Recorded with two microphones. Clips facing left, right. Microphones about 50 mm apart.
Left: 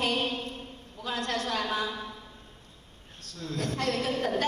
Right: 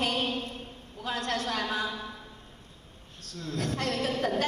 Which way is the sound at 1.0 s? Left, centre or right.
Right.